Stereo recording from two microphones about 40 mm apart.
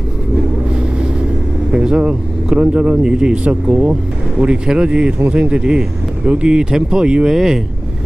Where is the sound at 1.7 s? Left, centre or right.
Right.